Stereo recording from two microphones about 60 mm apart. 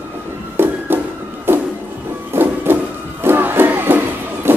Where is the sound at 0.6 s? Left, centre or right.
Right.